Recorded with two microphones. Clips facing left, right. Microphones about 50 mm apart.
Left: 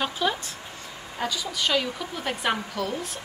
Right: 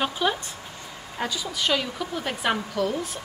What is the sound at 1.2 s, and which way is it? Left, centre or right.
A woman's voice, centre.